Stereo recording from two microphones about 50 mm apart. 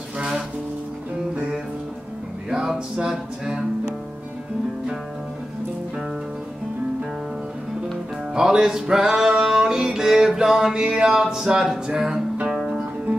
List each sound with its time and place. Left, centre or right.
2.5 s music: centre
8.4 s music: centre
11.9 s speech: centre
12.5 s music: centre